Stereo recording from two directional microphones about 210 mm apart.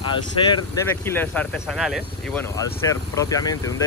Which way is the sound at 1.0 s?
10° left (ahead or behind).